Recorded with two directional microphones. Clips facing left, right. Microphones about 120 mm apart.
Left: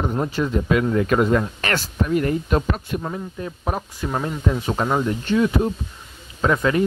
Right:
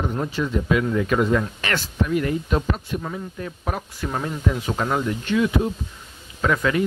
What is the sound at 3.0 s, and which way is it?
Speech, 30° left (ahead or behind).